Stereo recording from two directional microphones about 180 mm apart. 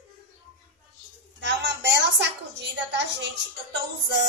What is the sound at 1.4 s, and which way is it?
A woman's voice, 75° right (ahead or behind).